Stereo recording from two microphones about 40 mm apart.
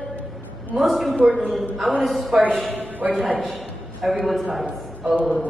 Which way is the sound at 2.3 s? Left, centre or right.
Right.